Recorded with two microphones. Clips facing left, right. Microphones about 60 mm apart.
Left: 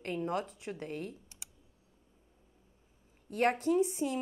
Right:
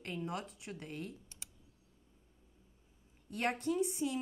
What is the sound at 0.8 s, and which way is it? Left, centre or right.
Speech, centre.